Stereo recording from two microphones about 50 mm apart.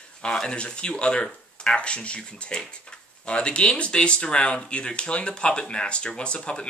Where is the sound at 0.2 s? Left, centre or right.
Centre.